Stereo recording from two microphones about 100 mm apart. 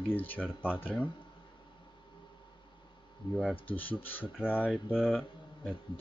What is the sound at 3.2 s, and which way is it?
Speech, 55° left (ahead or behind).